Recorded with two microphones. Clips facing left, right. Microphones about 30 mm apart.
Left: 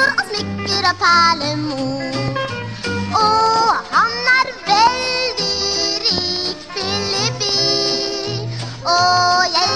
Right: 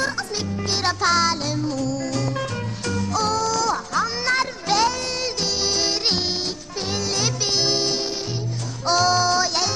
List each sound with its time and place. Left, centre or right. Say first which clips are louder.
0.0 s music: left 9 dB; left
0.7 s music: left 7 dB; left
5.8 s music: left 3 dB; left